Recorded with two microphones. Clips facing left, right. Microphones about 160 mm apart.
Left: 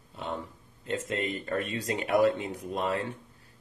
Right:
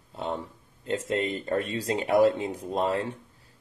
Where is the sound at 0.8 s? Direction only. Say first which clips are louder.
Right 4 dB; 30° right (ahead or behind).